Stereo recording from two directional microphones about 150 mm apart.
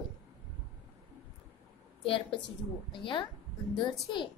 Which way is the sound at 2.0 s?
35° left (ahead or behind).